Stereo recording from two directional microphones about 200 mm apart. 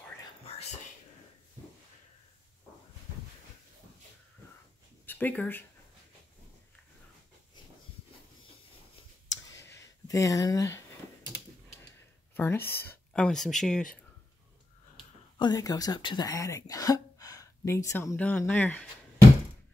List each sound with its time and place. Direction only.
5.0 s speech: 10° left (ahead or behind)
9.3 s a sound: 15° left (ahead or behind)
12.4 s speech: 10° left (ahead or behind)
15.3 s speech: 20° left (ahead or behind)